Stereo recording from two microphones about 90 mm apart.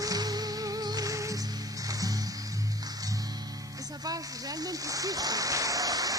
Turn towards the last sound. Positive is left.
turn(degrees=-40)  # may be behind; listen again after turning